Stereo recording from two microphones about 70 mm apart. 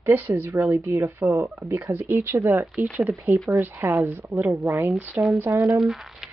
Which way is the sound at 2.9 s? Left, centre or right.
Right.